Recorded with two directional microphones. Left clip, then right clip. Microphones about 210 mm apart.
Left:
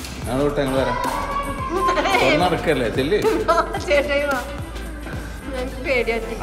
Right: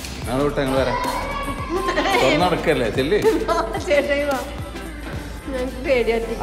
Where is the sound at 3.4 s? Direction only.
15° right (ahead or behind).